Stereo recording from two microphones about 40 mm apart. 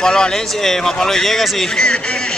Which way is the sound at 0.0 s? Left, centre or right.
Centre.